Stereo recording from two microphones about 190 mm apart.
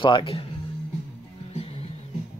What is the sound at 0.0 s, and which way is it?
Speech, 25° left (ahead or behind).